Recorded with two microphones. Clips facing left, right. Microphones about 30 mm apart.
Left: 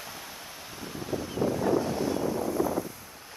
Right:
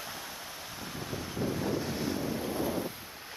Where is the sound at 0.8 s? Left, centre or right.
Centre.